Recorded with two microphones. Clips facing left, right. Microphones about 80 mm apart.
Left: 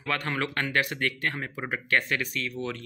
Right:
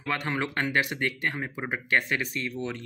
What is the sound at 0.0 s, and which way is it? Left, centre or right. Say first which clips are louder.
Speech: even; right.